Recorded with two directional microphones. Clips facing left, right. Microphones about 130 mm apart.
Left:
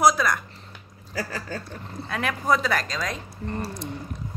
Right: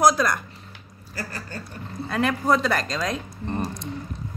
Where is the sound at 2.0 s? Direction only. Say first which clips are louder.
Right 2 dB; centre (ahead or behind).